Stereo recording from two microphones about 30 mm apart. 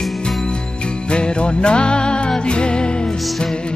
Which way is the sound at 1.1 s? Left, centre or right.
Left.